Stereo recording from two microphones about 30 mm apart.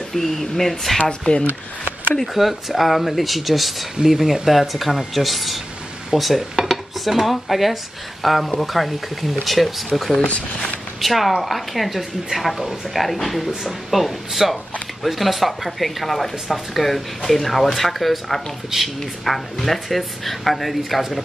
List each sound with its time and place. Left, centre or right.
0.1 s speech: centre
0.9 s speech: centre
2.3 s speech: centre
18.7 s speech: centre
19.2 s speech: centre